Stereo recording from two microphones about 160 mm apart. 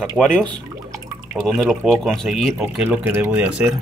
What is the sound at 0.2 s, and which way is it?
Speech, 5° right (ahead or behind).